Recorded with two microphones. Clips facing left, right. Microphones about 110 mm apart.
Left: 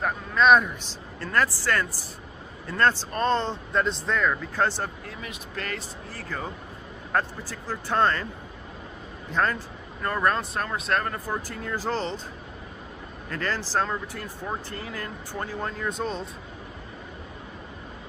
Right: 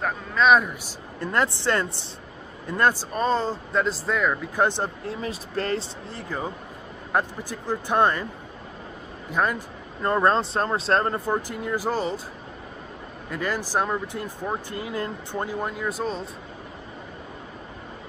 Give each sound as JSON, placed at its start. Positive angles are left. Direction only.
{"t": 0.0, "sound": "a man's voice", "side_deg": 0}
{"t": 1.2, "sound": "speech", "side_deg": -20}
{"t": 2.7, "sound": "speech", "side_deg": -15}
{"t": 6.1, "sound": "speech", "side_deg": -15}
{"t": 9.3, "sound": "speech", "side_deg": -10}
{"t": 10.0, "sound": "speech", "side_deg": -25}
{"t": 13.3, "sound": "speech", "side_deg": -15}